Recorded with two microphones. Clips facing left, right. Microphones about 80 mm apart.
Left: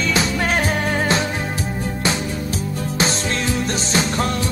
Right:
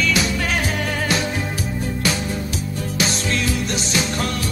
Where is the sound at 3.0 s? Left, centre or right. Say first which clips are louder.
Left 1 dB; left.